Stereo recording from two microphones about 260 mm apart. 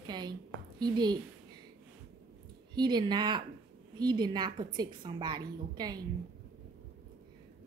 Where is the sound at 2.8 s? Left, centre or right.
Centre.